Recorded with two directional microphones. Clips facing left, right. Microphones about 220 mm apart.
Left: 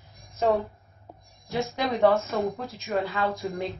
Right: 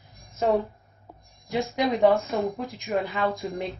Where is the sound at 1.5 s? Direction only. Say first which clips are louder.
Right 3 dB; 15° right (ahead or behind).